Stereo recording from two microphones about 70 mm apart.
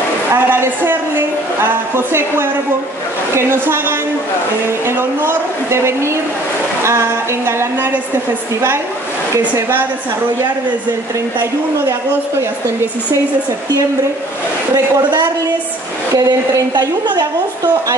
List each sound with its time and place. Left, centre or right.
0.3 s a woman's voice: right
9.4 s a woman's voice: right
16.2 s a woman's voice: right